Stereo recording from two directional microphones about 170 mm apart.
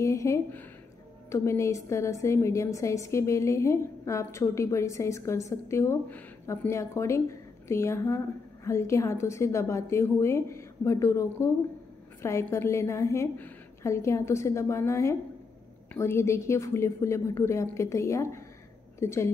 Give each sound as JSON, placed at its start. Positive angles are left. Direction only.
{"t": 0.0, "sound": "a woman's voice", "side_deg": 15}